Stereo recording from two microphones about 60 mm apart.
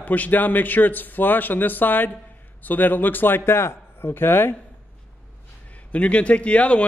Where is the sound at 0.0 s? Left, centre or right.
Left.